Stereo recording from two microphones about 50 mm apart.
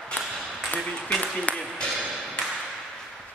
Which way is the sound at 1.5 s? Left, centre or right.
Left.